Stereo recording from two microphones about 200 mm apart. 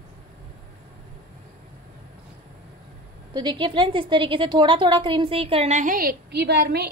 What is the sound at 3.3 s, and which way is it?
A woman's voice, 25° right (ahead or behind).